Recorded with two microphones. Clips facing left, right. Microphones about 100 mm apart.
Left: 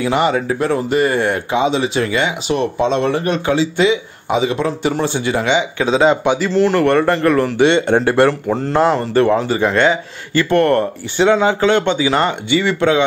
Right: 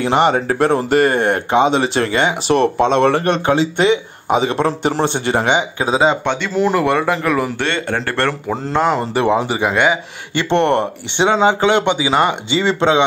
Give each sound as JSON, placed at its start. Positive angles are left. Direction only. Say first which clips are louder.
{"t": 0.0, "sound": "speech", "louder": "right 1 dB", "side_deg": -50}
{"t": 5.9, "sound": "speech", "louder": "left 2 dB", "side_deg": -10}
{"t": 6.2, "sound": "speech", "louder": "left 4 dB", "side_deg": 5}
{"t": 6.5, "sound": "speech", "louder": "left 1 dB", "side_deg": -15}
{"t": 7.6, "sound": "speech", "louder": "left 8 dB", "side_deg": 20}
{"t": 8.5, "sound": "speech", "louder": "left 2 dB", "side_deg": 0}
{"t": 9.1, "sound": "speech", "louder": "left 2 dB", "side_deg": -15}
{"t": 10.3, "sound": "speech", "louder": "left 2 dB", "side_deg": -25}
{"t": 12.4, "sound": "speech", "louder": "even", "side_deg": -25}